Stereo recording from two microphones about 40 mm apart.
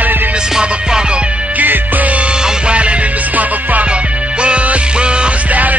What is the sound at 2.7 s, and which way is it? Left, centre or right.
Music, right.